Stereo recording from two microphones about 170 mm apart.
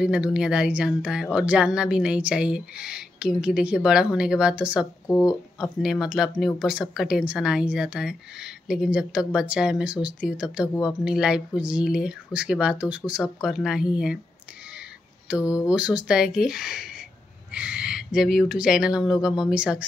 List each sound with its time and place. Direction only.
0.0 s speech: 5° right (ahead or behind)
5.0 s speech: 20° left (ahead or behind)
5.6 s speech: centre (ahead or behind)
15.6 s speech: 5° right (ahead or behind)